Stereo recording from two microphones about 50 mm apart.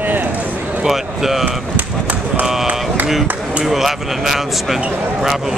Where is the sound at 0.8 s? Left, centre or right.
Centre.